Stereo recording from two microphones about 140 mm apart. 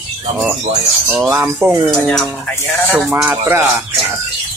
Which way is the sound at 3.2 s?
15° right (ahead or behind).